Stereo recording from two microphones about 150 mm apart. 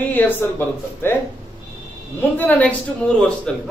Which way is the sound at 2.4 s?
10° left (ahead or behind).